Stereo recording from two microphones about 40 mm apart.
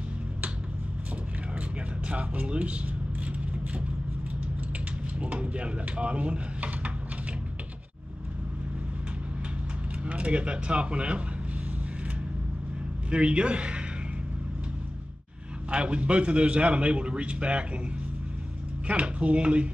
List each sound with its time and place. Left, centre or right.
2.0 s speech: right
5.2 s speech: right
10.0 s a man's voice: right
13.1 s a man's voice: right
15.7 s a man's voice: right
18.9 s speech: right